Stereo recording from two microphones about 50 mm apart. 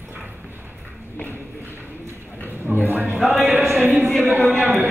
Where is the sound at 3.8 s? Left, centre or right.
Right.